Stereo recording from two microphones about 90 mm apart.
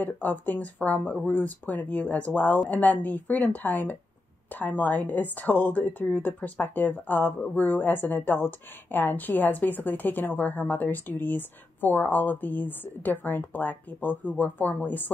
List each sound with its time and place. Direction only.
0.0 s a woman's voice: 20° left (ahead or behind)